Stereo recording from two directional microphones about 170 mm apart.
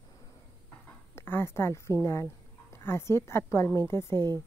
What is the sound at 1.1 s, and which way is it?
A woman's voice, 15° left (ahead or behind).